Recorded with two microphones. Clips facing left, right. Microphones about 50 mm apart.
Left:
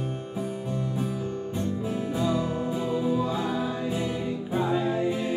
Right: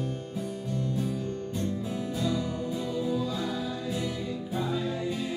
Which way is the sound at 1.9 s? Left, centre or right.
Left.